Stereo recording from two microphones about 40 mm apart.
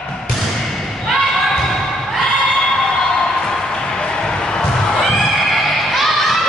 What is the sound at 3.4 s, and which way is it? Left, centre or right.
Music, centre.